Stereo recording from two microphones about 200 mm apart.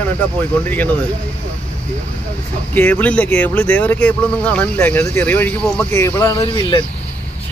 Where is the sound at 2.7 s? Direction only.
10° left (ahead or behind).